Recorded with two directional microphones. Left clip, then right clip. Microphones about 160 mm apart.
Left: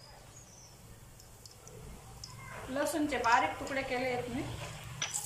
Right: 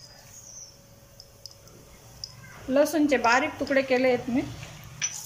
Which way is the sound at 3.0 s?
55° right (ahead or behind).